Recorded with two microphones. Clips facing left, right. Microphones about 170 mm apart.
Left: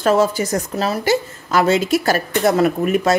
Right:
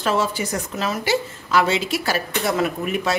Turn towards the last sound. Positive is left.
turn(degrees=40)  # may be behind; listen again after turning